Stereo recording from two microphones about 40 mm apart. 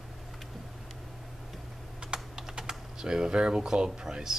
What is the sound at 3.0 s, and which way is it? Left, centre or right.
Speech, centre.